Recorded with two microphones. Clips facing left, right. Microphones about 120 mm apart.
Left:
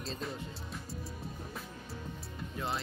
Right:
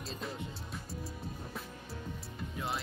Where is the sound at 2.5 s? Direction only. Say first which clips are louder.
Left 1 dB; centre (ahead or behind).